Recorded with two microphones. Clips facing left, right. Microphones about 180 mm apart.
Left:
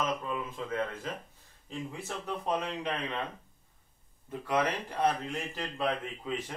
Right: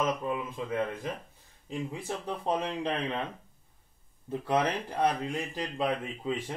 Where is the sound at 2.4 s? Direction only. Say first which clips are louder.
Right 3 dB; 30° right (ahead or behind).